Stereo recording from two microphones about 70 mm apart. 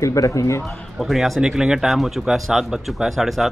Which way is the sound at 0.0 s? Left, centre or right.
Left.